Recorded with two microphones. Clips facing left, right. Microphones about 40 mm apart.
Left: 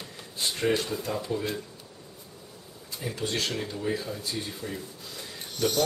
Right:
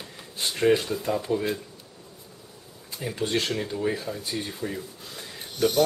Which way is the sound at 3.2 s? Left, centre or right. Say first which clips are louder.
Right 4 dB; right.